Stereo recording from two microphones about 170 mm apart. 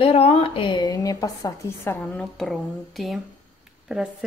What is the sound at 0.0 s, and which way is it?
A woman's voice, 35° left (ahead or behind).